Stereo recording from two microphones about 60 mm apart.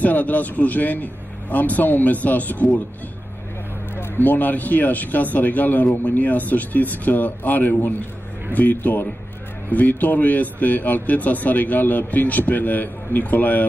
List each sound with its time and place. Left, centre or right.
0.0 s speech: left
3.9 s speech: left